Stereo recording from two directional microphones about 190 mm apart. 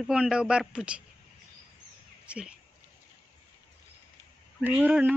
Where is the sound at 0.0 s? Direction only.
5° right (ahead or behind).